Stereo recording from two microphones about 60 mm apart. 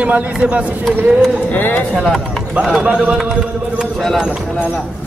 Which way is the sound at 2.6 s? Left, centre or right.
Centre.